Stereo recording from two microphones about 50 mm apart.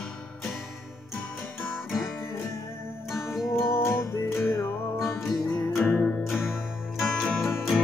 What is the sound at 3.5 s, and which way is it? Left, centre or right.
Music, left.